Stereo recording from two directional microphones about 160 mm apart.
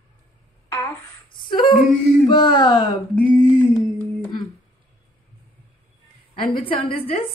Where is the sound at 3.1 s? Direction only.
10° left (ahead or behind).